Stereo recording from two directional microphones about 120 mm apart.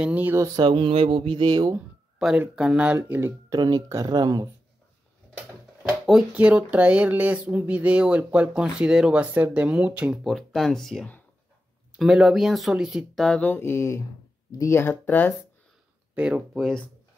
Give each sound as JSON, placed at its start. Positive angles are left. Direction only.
{"t": 0.0, "sound": "speech", "side_deg": -15}
{"t": 0.6, "sound": "speech", "side_deg": -40}
{"t": 2.1, "sound": "speech", "side_deg": -5}
{"t": 3.4, "sound": "speech", "side_deg": -35}
{"t": 5.8, "sound": "a sound", "side_deg": 0}
{"t": 6.3, "sound": "speech", "side_deg": -10}
{"t": 10.2, "sound": "speech", "side_deg": 0}
{"t": 16.2, "sound": "speech", "side_deg": -5}